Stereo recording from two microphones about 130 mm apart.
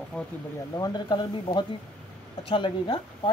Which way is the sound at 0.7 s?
30° left (ahead or behind).